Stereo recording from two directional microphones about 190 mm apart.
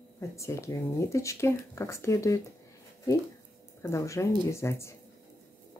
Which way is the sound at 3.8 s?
15° left (ahead or behind).